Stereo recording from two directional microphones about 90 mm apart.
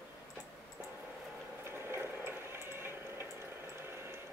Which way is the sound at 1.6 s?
25° right (ahead or behind).